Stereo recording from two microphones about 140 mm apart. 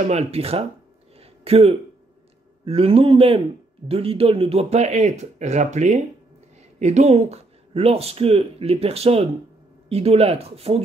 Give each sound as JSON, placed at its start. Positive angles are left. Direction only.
{"t": 0.0, "sound": "speech", "side_deg": -50}
{"t": 1.2, "sound": "a sound", "side_deg": -45}
{"t": 2.6, "sound": "speech", "side_deg": -45}